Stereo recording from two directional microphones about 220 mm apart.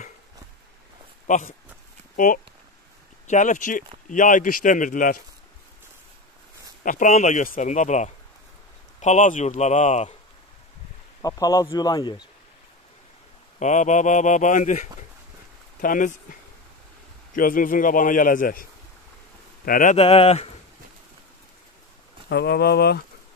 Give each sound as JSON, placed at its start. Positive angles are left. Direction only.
{"t": 1.2, "sound": "a man's voice", "side_deg": 35}
{"t": 6.8, "sound": "a man's voice", "side_deg": 35}
{"t": 11.2, "sound": "speech", "side_deg": 15}
{"t": 13.6, "sound": "a man's voice", "side_deg": 35}
{"t": 22.3, "sound": "speech", "side_deg": 50}